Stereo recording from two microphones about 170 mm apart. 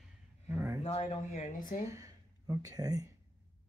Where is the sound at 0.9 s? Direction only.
35° left (ahead or behind).